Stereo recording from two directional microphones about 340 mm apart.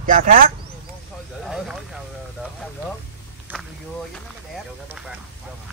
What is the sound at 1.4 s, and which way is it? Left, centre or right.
Vehicle, centre.